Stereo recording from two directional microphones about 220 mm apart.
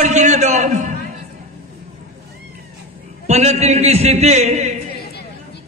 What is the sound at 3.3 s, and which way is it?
A man's voice, 30° right (ahead or behind).